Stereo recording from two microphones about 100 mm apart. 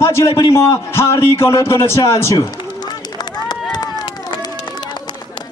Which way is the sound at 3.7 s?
45° left (ahead or behind).